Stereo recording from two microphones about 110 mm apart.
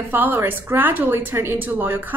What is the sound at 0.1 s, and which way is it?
A woman's voice, 15° right (ahead or behind).